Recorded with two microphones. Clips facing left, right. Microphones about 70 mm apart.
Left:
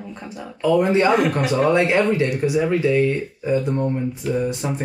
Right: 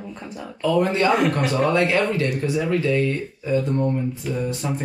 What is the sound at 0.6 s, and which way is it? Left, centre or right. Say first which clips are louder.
Speech: left 3 dB; centre.